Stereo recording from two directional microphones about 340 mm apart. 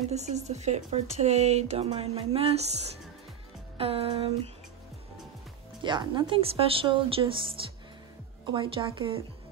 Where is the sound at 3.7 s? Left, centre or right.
Centre.